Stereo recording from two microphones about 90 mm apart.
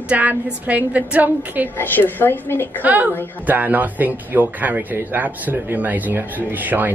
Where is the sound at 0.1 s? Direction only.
15° right (ahead or behind).